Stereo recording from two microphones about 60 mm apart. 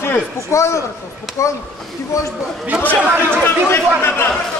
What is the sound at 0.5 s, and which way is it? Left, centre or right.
Speech, left.